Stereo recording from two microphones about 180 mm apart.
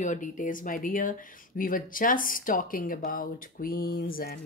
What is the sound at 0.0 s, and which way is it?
Speech, 45° left (ahead or behind).